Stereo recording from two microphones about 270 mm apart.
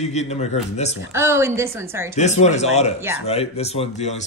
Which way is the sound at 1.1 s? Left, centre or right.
Centre.